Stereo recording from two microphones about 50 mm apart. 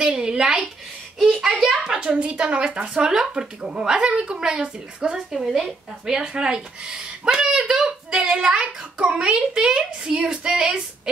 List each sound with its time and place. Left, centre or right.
0.0 s a woman's voice: centre
1.2 s a child's voice: centre
1.6 s a woman's voice: centre